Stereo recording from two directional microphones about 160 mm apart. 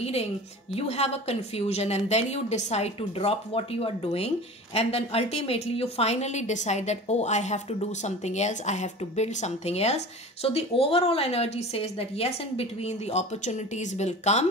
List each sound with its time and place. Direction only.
0.7 s a woman's voice: 40° left (ahead or behind)